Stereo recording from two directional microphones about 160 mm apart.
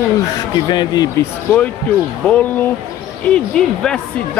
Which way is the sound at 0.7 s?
25° left (ahead or behind).